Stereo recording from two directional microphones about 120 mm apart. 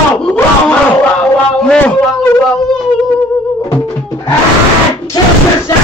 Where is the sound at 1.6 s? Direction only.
5° left (ahead or behind).